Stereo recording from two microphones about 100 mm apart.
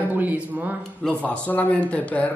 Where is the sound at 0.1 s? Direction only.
15° right (ahead or behind).